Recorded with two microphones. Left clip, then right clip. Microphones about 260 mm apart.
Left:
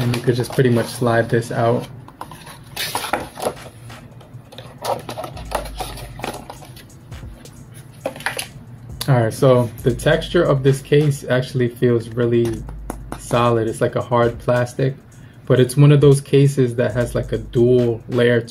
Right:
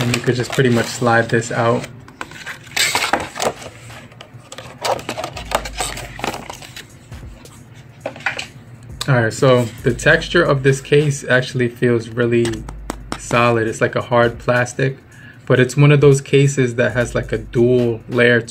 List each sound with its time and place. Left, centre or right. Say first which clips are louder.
0.3 s speech: even; centre
2.7 s dishes: right 6 dB; right
4.6 s sewing machine: right 3 dB; right
8.9 s speech: right 2 dB; centre
12.6 s a sound: right 4 dB; right
13.3 s speech: right 2 dB; centre